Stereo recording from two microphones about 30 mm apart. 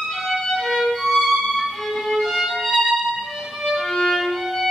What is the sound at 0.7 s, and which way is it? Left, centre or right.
Violin, centre.